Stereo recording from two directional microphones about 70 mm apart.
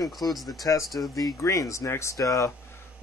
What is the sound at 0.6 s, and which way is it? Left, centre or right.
A man's voice, left.